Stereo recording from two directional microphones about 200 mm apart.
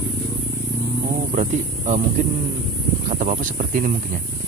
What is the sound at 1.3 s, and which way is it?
Speech, 35° right (ahead or behind).